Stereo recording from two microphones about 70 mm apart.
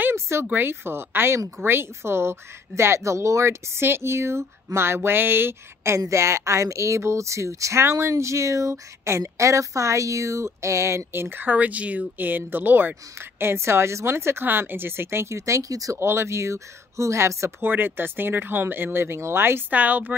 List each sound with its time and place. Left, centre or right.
0.0 s a sound: right
0.5 s speech: right
5.9 s speech: right
16.0 s speech: right
17.6 s speech: right
19.7 s speech: right